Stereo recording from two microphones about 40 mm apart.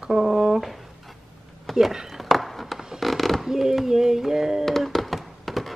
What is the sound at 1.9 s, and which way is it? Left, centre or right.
Speech, centre.